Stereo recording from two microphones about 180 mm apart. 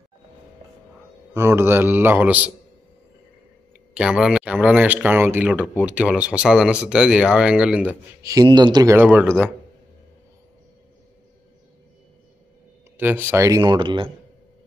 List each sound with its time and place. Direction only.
1.3 s speech: 15° right (ahead or behind)
3.9 s speech: 5° right (ahead or behind)
12.9 s speech: 10° right (ahead or behind); by 14.1 s 25° right (ahead or behind)